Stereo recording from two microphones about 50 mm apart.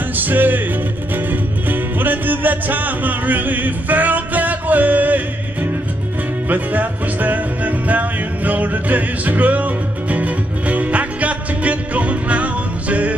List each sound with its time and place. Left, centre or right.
0.1 s music: right